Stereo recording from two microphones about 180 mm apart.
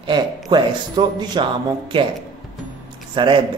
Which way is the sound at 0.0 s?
25° right (ahead or behind).